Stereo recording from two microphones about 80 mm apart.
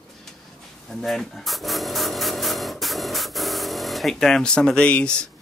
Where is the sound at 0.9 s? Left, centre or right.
Centre.